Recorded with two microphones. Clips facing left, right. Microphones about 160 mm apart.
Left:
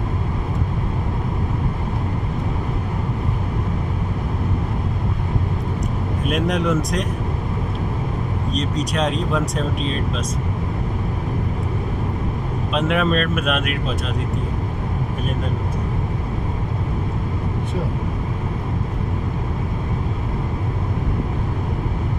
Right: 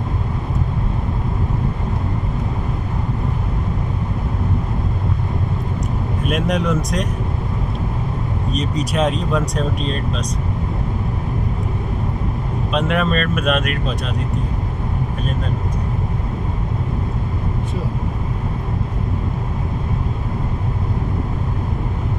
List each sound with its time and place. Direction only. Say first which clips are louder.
6.2 s speech: right 1 dB; centre (ahead or behind)
8.5 s speech: right 2 dB; 5° right (ahead or behind)
12.7 s speech: even; centre (ahead or behind)